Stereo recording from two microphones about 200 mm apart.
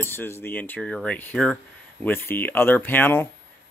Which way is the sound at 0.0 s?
10° left (ahead or behind).